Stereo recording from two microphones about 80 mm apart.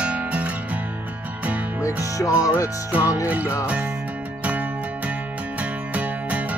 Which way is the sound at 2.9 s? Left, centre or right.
Centre.